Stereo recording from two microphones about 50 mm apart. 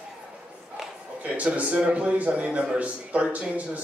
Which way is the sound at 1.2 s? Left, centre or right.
Right.